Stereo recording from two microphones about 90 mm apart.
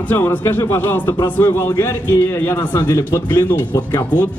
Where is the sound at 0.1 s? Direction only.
20° left (ahead or behind).